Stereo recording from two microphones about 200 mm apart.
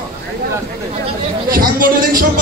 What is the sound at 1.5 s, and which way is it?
Speech, 45° right (ahead or behind).